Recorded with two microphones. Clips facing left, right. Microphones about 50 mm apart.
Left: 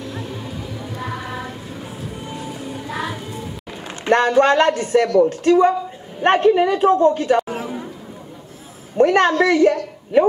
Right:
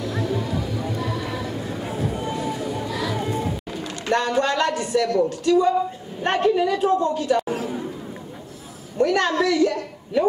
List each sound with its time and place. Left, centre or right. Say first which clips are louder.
0.1 s a sound: right 5 dB; right
0.9 s music: right 1 dB; left
2.9 s music: left 4 dB; left
3.7 s a sound: even; left
4.1 s a woman's voice: left 7 dB; left
7.4 s chatter: right 1 dB; left
8.9 s a woman's voice: left 5 dB; left